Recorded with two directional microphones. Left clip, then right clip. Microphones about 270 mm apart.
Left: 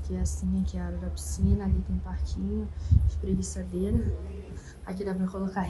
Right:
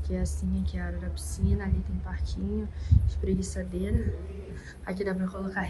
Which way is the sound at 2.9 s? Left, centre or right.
Centre.